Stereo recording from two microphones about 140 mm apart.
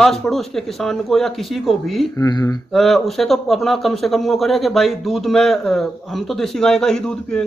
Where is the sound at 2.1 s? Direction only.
25° left (ahead or behind).